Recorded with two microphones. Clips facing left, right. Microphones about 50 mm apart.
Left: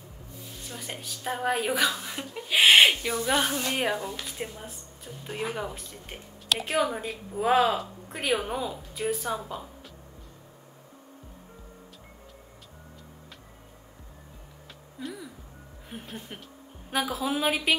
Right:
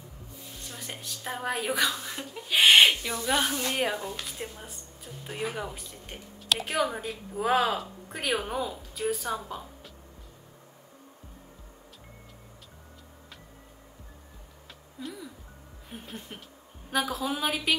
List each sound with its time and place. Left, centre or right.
0.7 s speech: centre
15.9 s a woman's voice: centre